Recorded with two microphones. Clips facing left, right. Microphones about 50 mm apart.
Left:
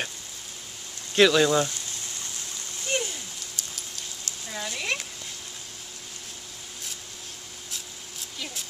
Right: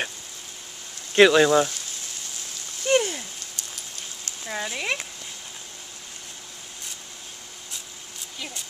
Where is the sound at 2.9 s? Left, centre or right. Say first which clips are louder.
Right 8 dB; right.